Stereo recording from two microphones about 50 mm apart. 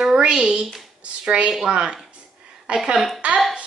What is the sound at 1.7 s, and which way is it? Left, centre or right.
Speech, centre.